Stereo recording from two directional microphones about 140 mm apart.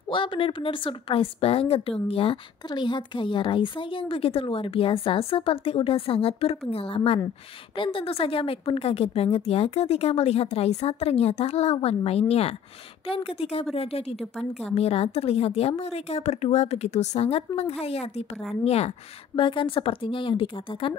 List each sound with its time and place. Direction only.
0.1 s a woman's voice: 35° left (ahead or behind)
19.3 s speech: 35° left (ahead or behind)